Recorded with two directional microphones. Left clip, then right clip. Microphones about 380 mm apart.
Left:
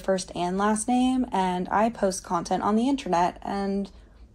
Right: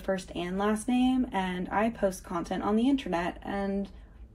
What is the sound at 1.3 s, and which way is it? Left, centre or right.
A woman's voice, centre.